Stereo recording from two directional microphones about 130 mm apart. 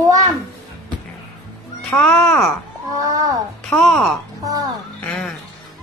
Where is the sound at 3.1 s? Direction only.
30° right (ahead or behind).